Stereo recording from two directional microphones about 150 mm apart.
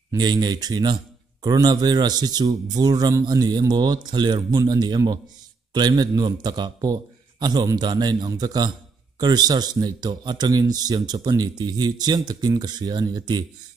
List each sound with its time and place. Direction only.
0.1 s a man's voice: 30° right (ahead or behind)